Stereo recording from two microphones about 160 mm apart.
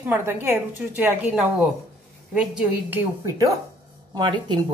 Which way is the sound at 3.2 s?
20° right (ahead or behind).